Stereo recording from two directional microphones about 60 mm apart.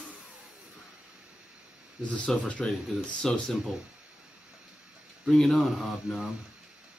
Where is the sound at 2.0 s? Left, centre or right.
Centre.